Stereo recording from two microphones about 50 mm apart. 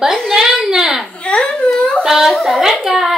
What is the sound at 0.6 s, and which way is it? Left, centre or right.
Speech, centre.